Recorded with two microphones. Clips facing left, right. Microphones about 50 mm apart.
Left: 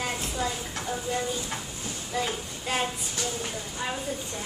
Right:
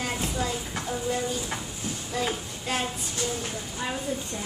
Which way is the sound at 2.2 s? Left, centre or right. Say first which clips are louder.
Right 1 dB; centre.